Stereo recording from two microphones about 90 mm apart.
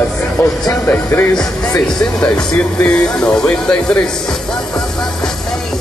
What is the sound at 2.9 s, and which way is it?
Speech, 10° left (ahead or behind).